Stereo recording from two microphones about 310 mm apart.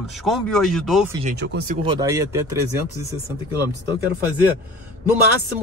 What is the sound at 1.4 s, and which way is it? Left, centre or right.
Speech, right.